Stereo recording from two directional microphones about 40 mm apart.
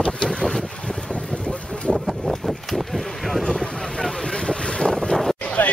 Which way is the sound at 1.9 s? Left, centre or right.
Centre.